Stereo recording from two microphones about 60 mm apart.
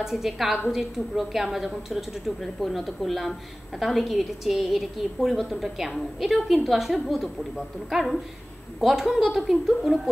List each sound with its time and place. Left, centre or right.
0.0 s a woman's voice: centre